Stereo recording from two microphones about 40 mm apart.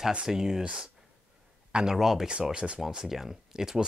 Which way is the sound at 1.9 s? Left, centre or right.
Centre.